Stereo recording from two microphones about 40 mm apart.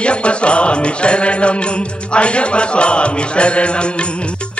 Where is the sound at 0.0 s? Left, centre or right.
Left.